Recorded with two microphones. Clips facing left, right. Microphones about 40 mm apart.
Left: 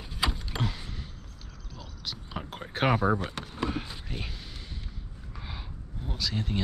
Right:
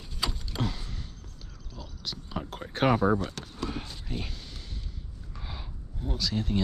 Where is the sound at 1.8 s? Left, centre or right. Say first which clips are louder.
Right 1 dB; centre.